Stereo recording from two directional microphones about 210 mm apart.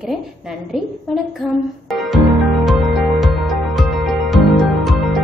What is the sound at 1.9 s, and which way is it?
Music, centre (ahead or behind).